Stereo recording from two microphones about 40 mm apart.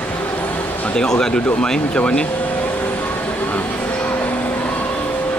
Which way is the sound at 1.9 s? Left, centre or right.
Left.